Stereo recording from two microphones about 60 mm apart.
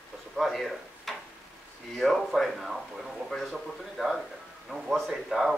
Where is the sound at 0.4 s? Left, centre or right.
Centre.